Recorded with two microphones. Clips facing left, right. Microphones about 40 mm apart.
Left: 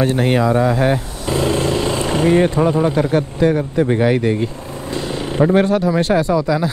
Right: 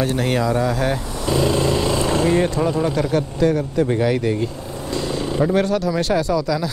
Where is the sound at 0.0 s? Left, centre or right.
Left.